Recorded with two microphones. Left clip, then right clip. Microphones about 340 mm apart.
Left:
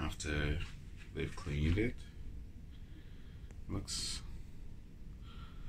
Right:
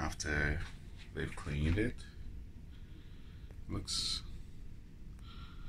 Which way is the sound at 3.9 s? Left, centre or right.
Left.